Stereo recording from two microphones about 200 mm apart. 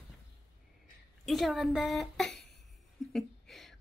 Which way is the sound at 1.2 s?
Centre (ahead or behind).